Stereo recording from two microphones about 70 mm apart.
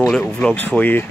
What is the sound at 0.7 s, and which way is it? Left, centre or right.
Speech, left.